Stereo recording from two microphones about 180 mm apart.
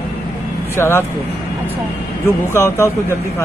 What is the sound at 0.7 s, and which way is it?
Speech, 15° left (ahead or behind).